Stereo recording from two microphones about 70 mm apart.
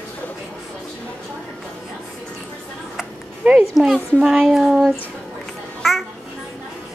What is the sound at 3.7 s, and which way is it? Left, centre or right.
A child's voice, centre.